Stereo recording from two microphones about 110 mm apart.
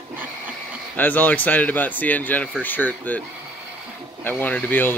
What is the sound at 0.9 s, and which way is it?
Speech, 15° left (ahead or behind).